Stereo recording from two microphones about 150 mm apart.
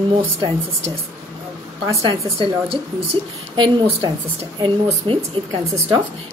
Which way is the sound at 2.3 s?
35° right (ahead or behind).